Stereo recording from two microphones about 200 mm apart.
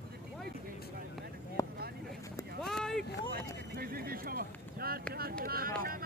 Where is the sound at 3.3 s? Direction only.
50° right (ahead or behind).